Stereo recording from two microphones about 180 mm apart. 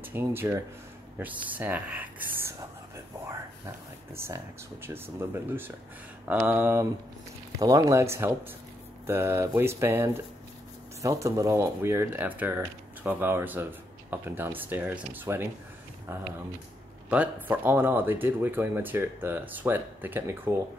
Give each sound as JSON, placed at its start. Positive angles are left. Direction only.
{"t": 0.0, "sound": "speech", "side_deg": -10}
{"t": 4.1, "sound": "speech", "side_deg": -15}
{"t": 17.1, "sound": "speech", "side_deg": -10}